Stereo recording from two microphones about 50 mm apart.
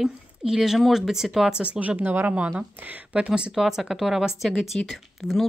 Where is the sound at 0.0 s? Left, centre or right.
Centre.